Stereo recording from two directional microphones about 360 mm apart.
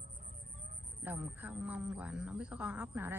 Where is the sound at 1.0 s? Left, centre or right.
Centre.